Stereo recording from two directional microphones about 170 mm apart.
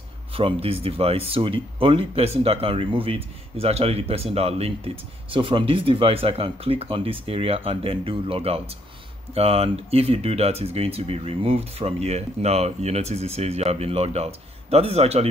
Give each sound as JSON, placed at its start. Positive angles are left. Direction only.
{"t": 0.3, "sound": "speech", "side_deg": -35}